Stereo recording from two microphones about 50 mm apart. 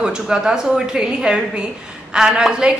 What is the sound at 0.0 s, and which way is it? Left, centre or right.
A woman's voice, centre.